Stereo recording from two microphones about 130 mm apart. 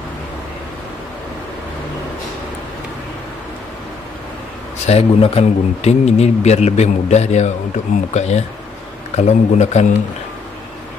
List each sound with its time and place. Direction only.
4.8 s a man's voice: 50° left (ahead or behind)